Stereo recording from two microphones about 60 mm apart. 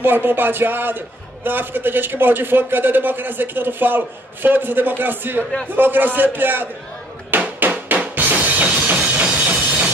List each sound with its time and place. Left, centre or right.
0.0 s a man's voice: right
7.2 s drum: right